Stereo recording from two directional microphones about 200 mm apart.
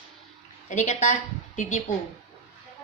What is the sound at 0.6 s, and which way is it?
Speech, 40° left (ahead or behind).